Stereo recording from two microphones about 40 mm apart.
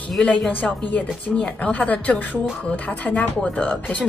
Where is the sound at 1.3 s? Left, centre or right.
Centre.